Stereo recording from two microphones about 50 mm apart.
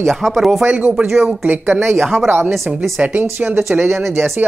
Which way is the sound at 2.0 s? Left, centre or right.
Centre.